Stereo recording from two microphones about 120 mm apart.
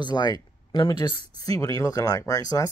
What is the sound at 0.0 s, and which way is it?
Speech, 35° left (ahead or behind).